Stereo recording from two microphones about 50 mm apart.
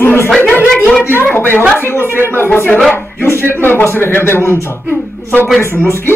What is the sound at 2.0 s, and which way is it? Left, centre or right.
Speech, right.